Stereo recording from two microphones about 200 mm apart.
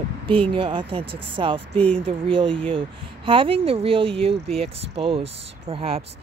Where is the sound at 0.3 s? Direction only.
25° right (ahead or behind).